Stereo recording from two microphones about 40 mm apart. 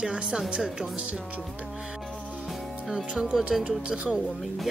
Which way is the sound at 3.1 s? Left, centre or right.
Right.